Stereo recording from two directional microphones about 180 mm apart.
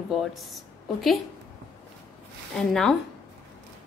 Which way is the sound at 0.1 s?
Centre (ahead or behind).